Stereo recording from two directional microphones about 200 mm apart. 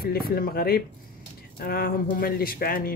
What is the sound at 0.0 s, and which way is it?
Speech, 50° left (ahead or behind).